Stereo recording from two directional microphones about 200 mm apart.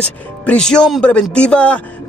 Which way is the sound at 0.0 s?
5° left (ahead or behind).